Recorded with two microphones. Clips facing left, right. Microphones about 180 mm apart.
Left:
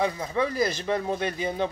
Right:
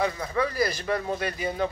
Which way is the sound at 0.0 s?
20° left (ahead or behind).